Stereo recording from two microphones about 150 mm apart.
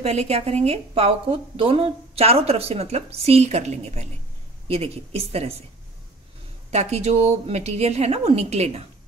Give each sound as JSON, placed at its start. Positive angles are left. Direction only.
{"t": 0.0, "sound": "a woman's voice", "side_deg": -45}
{"t": 6.7, "sound": "a woman's voice", "side_deg": -45}